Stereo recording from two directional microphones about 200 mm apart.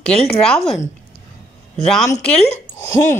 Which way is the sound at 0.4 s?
Centre (ahead or behind).